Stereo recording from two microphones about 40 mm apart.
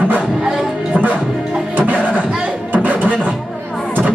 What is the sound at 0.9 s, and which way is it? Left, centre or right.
Music, right.